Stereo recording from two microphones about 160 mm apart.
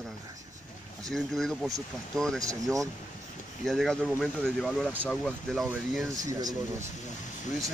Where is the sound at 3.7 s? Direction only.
Centre (ahead or behind).